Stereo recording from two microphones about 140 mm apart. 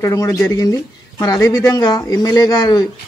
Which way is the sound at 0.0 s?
20° left (ahead or behind).